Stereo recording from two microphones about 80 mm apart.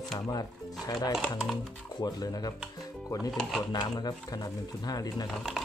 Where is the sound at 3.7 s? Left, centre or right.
Left.